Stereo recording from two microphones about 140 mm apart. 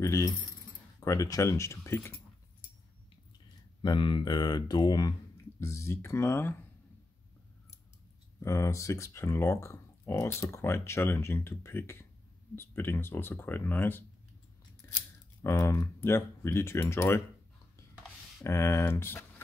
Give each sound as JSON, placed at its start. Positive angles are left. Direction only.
{"t": 0.0, "sound": "speech", "side_deg": 25}
{"t": 3.8, "sound": "speech", "side_deg": 35}
{"t": 8.4, "sound": "speech", "side_deg": 20}
{"t": 14.8, "sound": "scissors", "side_deg": 15}
{"t": 15.4, "sound": "speech", "side_deg": 20}
{"t": 18.4, "sound": "speech", "side_deg": 20}